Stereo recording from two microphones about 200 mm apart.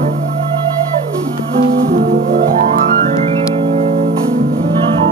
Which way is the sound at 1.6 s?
50° right (ahead or behind).